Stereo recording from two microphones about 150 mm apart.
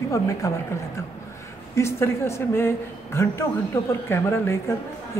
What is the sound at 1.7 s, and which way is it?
A man's voice, 20° left (ahead or behind).